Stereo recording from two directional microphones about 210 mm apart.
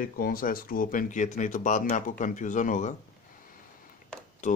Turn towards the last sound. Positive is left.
turn(degrees=35)  # may be behind; listen again after turning